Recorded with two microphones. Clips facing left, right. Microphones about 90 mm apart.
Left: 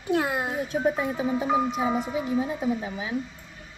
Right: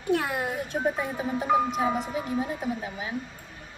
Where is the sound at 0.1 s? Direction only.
25° left (ahead or behind).